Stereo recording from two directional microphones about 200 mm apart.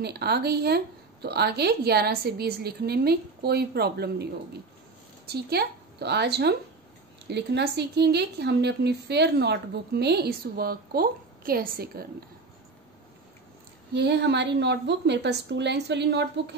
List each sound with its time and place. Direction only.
0.0 s a woman's voice: 55° right (ahead or behind)
13.9 s a woman's voice: 60° right (ahead or behind)